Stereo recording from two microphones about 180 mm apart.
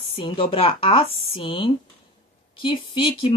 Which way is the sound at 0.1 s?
30° left (ahead or behind).